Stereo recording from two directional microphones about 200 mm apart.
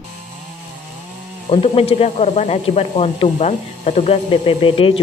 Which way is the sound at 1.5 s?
30° left (ahead or behind).